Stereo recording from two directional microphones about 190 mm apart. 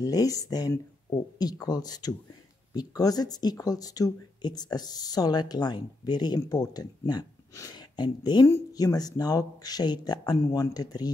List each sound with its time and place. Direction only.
0.0 s speech: 20° left (ahead or behind)